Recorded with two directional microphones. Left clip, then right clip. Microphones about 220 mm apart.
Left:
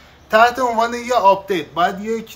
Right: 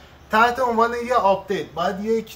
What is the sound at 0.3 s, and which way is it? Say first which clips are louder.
A man's voice: left 4 dB; 30° left (ahead or behind).